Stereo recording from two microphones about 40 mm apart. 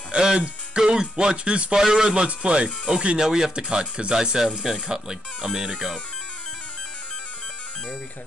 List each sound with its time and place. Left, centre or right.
0.2 s speech: centre
3.2 s speech: centre
3.6 s speech: right